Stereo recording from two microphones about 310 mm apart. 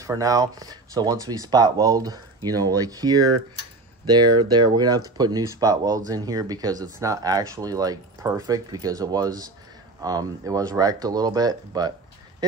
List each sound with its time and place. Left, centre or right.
0.0 s speech: centre